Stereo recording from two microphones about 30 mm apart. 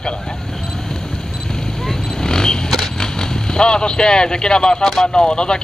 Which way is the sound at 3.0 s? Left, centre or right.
Left.